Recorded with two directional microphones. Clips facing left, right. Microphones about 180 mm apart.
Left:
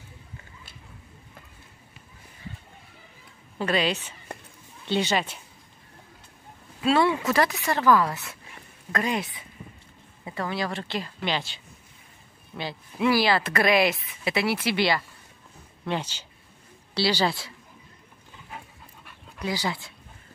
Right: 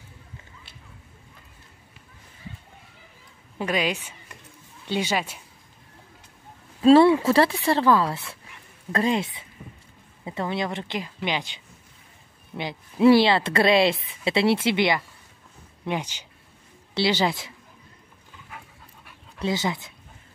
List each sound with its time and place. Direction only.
3.5 s a woman's voice: 10° right (ahead or behind)
6.8 s speech: 30° right (ahead or behind)
13.0 s speech: 25° right (ahead or behind)
19.4 s speech: 20° right (ahead or behind)